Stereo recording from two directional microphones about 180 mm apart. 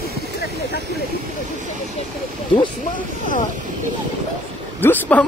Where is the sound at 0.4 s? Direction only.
65° left (ahead or behind).